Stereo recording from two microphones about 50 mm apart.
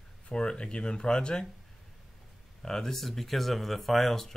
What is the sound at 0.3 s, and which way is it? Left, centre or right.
Speech, centre.